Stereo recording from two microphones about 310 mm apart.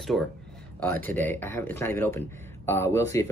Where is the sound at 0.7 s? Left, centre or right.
Centre.